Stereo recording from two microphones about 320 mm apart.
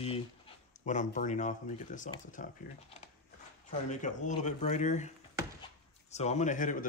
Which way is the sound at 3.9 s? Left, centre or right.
Left.